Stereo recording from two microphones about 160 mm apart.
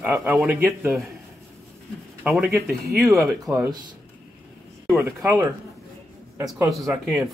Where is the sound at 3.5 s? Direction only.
20° right (ahead or behind).